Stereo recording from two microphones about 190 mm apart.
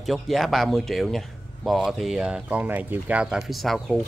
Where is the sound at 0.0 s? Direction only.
Centre (ahead or behind).